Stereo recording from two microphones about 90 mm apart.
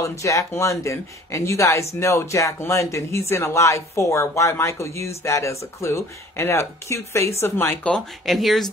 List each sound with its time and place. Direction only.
0.0 s speech: 35° left (ahead or behind)
7.8 s speech: centre (ahead or behind)